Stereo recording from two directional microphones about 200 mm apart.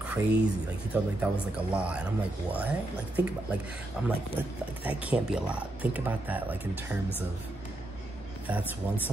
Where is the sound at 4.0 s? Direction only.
5° right (ahead or behind).